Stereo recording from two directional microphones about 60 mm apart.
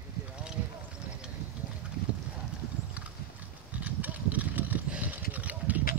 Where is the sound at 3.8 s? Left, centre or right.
Right.